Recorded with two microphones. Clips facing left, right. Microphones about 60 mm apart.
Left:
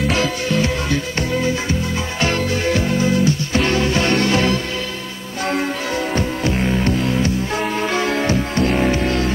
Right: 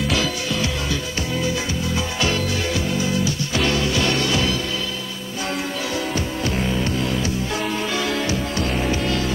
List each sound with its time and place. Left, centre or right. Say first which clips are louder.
0.1 s music: left 4 dB; left
7.1 s music: left 4 dB; left